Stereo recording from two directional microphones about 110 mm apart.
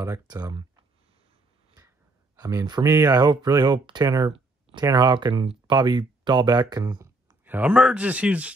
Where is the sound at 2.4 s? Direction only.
30° right (ahead or behind).